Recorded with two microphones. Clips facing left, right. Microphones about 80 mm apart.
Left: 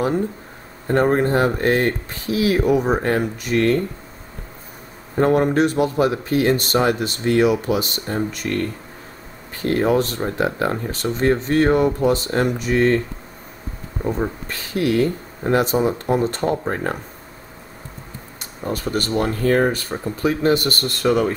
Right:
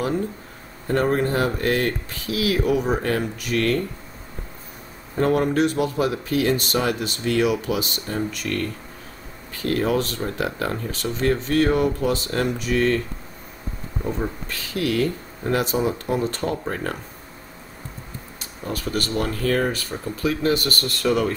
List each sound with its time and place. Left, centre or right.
0.8 s speech: left
5.1 s speech: left
14.0 s speech: left
18.6 s speech: left